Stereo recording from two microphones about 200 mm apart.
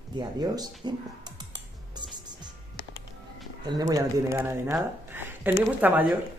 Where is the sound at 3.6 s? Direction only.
20° right (ahead or behind).